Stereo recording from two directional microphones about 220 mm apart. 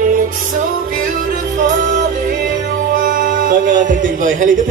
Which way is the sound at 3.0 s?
40° right (ahead or behind).